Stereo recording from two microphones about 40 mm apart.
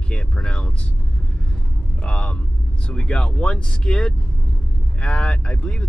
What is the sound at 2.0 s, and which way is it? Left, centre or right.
Speech, left.